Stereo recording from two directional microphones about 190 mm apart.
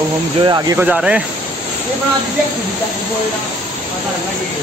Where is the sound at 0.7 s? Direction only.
5° right (ahead or behind).